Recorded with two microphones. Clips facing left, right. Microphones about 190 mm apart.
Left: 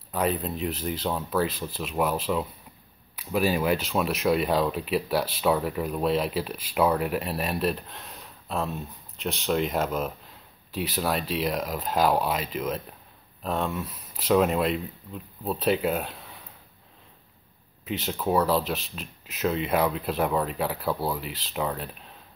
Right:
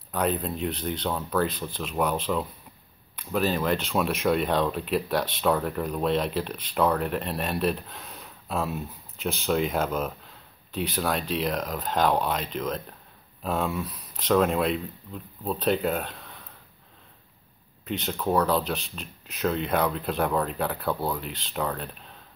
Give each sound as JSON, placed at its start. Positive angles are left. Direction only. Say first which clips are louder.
{"t": 0.1, "sound": "speech", "louder": "even", "side_deg": 0}
{"t": 17.8, "sound": "speech", "louder": "even", "side_deg": 5}